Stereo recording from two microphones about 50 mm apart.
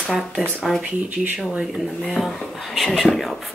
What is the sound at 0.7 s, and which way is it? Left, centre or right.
Speech, centre.